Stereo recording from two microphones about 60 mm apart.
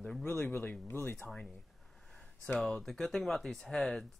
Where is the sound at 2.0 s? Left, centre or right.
Centre.